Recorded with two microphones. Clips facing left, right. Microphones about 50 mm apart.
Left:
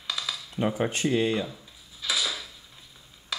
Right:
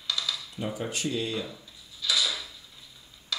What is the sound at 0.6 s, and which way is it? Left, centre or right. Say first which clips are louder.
Speech: left 6 dB; left.